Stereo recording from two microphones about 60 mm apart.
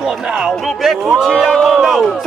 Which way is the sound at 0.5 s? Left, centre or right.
Centre.